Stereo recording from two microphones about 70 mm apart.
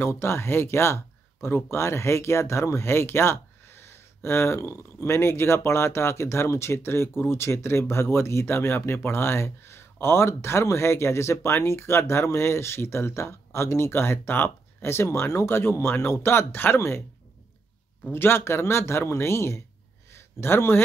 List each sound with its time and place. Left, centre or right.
0.0 s speech: left
18.1 s speech: left
20.1 s a sound: left